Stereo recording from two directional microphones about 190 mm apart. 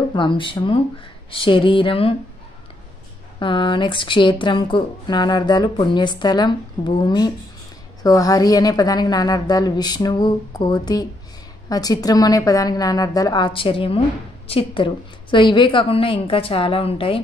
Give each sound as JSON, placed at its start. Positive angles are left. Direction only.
{"t": 0.1, "sound": "speech", "side_deg": 25}
{"t": 3.3, "sound": "speech", "side_deg": 25}